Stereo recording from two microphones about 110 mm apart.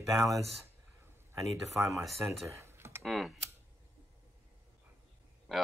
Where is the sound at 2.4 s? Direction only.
25° right (ahead or behind).